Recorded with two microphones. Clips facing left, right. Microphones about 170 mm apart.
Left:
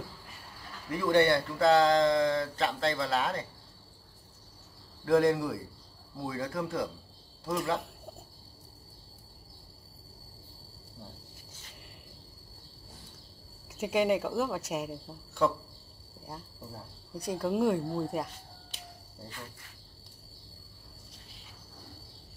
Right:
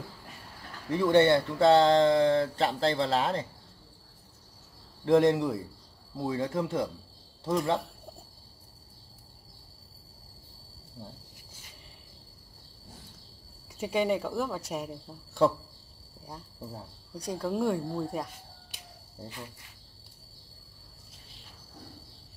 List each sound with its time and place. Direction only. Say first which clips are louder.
0.9 s speech: right 3 dB; 25° right (ahead or behind)
5.0 s speech: right 2 dB; 20° right (ahead or behind)
13.7 s speech: left 1 dB; 5° left (ahead or behind)
15.4 s speech: right 3 dB; 30° right (ahead or behind)
17.1 s speech: left 1 dB; centre (ahead or behind)
19.2 s cricket: right 3 dB; 15° right (ahead or behind)